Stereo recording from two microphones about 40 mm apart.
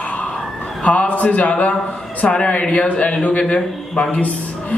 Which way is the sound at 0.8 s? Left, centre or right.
Left.